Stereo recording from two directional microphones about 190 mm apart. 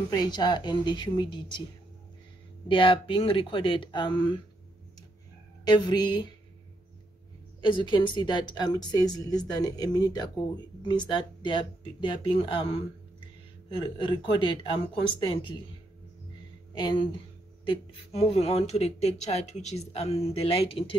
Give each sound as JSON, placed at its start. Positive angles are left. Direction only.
{"t": 0.2, "sound": "speech", "side_deg": 20}
{"t": 2.7, "sound": "speech", "side_deg": 25}
{"t": 5.7, "sound": "speech", "side_deg": 20}
{"t": 7.6, "sound": "speech", "side_deg": 25}
{"t": 13.8, "sound": "speech", "side_deg": 25}
{"t": 16.7, "sound": "speech", "side_deg": 25}